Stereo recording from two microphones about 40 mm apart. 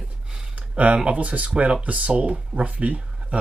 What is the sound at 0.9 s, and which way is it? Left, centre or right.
Speech, right.